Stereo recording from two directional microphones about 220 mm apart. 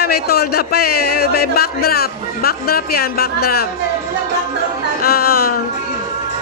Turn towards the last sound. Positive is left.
turn(degrees=45)  # may be behind; listen again after turning